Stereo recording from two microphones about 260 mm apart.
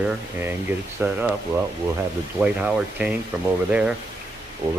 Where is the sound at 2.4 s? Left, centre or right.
Centre.